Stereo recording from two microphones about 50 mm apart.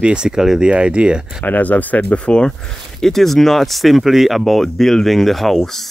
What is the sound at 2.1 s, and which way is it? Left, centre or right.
Speech, left.